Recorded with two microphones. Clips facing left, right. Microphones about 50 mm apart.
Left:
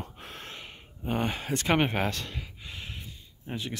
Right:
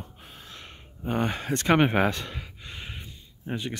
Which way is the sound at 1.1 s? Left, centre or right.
Centre.